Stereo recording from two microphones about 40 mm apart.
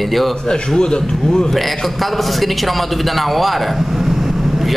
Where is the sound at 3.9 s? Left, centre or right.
Centre.